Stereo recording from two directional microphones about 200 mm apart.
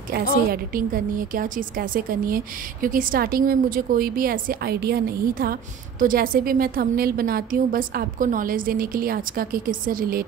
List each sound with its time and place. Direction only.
0.1 s a woman's voice: 45° right (ahead or behind)